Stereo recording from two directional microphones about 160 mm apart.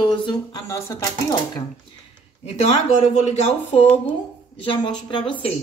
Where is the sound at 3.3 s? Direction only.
45° left (ahead or behind).